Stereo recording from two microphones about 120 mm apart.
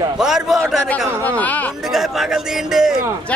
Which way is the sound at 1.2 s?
15° left (ahead or behind).